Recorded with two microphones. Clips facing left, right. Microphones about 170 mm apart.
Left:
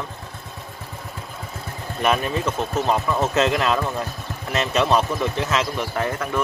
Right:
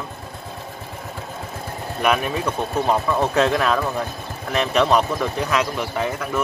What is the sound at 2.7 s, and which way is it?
Speech, 15° right (ahead or behind).